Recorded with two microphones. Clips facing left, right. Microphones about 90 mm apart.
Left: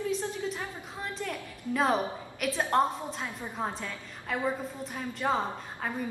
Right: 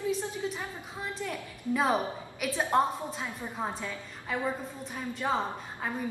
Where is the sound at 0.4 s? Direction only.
5° right (ahead or behind).